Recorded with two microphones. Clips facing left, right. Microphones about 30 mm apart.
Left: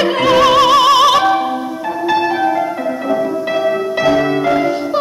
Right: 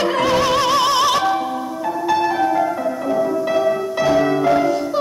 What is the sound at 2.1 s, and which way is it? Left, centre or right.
Music, left.